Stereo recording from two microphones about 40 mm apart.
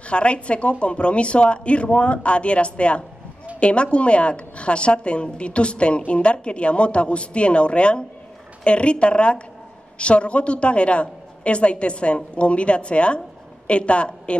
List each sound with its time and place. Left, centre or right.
0.1 s a woman's voice: left